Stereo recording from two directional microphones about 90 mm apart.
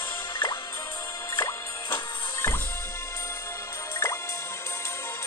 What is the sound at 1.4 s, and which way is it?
Music, 30° left (ahead or behind).